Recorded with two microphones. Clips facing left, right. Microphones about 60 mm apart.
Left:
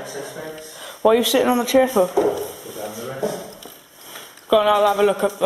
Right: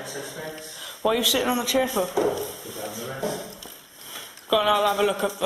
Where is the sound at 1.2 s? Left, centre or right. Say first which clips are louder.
Left 6 dB; left.